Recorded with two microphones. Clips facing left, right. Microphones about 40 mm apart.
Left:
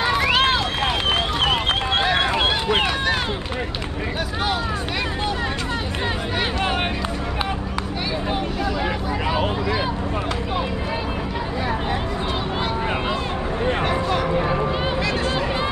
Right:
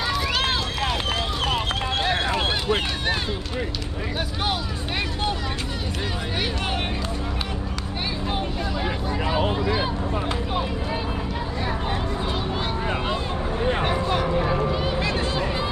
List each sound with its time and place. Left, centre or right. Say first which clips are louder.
0.0 s run: left 6 dB; left